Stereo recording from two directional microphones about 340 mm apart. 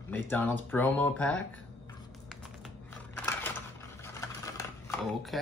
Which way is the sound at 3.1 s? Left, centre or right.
Centre.